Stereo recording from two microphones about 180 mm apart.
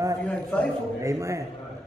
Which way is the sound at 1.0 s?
15° right (ahead or behind).